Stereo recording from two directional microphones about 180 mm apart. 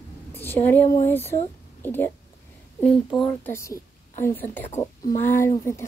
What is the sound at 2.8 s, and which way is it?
Speech, centre (ahead or behind).